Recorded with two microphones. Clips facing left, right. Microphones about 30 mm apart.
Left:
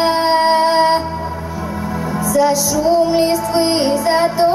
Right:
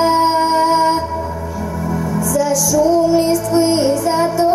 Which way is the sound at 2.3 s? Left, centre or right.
Left.